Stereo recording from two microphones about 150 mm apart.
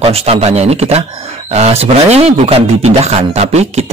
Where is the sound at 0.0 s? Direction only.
40° right (ahead or behind).